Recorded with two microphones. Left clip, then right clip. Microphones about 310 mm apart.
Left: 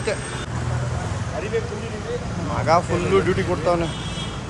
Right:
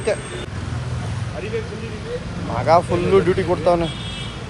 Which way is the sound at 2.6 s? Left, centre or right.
Centre.